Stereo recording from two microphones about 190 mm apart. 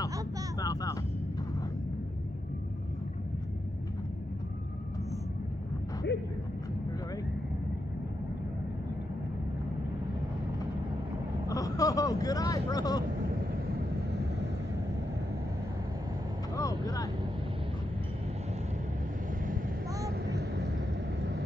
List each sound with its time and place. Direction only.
0.6 s vehicle: 20° left (ahead or behind)
11.4 s speech: 20° left (ahead or behind)
13.4 s vehicle: 55° right (ahead or behind)
16.5 s vehicle: 20° left (ahead or behind)
20.1 s vehicle: 60° right (ahead or behind)